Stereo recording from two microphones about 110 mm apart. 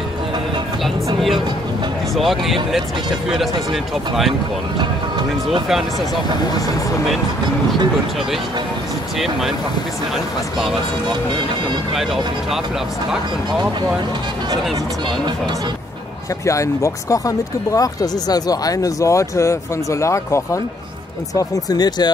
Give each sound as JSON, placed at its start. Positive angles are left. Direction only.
{"t": 2.1, "sound": "speech", "side_deg": 0}
{"t": 16.4, "sound": "speech", "side_deg": 30}
{"t": 21.4, "sound": "speech", "side_deg": 35}